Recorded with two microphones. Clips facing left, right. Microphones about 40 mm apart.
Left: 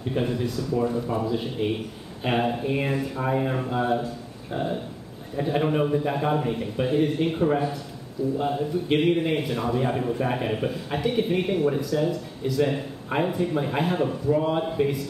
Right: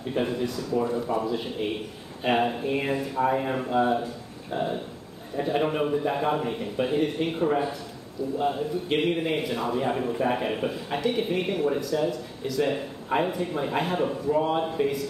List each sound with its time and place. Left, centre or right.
0.1 s a man's voice: centre